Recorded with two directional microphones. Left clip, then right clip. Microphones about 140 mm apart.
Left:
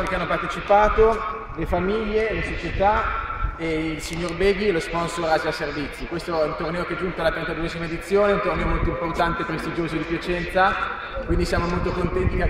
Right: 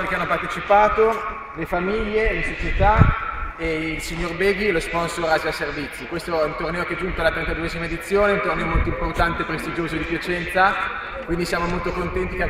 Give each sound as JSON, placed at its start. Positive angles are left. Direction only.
{"t": 0.2, "sound": "a man's voice", "side_deg": 10}
{"t": 4.4, "sound": "a man's voice", "side_deg": 10}